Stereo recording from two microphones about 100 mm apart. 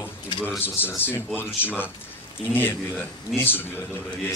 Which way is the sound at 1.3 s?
20° left (ahead or behind).